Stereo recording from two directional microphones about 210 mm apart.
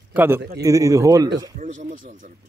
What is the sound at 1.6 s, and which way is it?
Speech, 35° right (ahead or behind).